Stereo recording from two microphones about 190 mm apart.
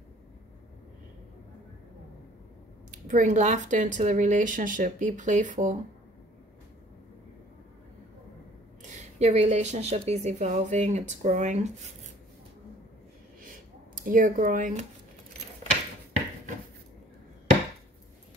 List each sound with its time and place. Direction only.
3.1 s a woman's voice: 40° right (ahead or behind)
8.8 s a woman's voice: 35° right (ahead or behind)
13.4 s a sound: 45° right (ahead or behind)